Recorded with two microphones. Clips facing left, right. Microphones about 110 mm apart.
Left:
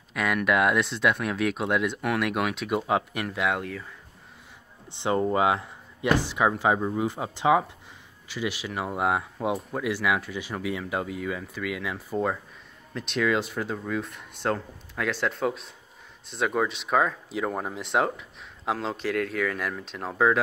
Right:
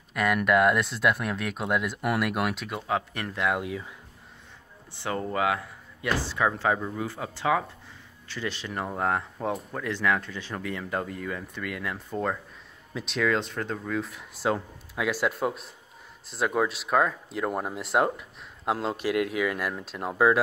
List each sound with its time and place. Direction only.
0.1 s speech: centre (ahead or behind)
2.7 s speech: 15° left (ahead or behind)
3.6 s speech: 10° right (ahead or behind)
4.9 s speech: 20° left (ahead or behind); by 20.3 s 5° right (ahead or behind)